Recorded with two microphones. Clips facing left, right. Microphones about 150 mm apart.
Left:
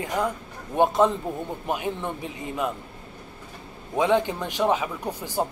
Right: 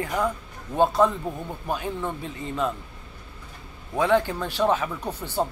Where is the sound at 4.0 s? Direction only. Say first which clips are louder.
Even; 20° left (ahead or behind).